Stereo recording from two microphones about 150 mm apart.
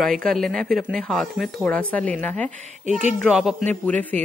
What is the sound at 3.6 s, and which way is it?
Speech, 10° left (ahead or behind).